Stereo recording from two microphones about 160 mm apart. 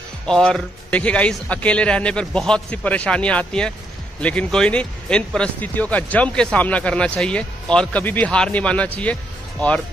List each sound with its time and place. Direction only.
0.3 s speech: 5° left (ahead or behind)